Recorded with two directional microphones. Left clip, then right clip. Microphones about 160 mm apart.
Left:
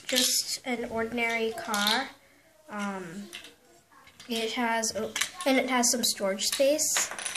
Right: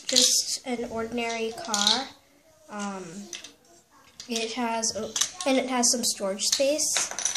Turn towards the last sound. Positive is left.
turn(degrees=0)  # may be behind; listen again after turning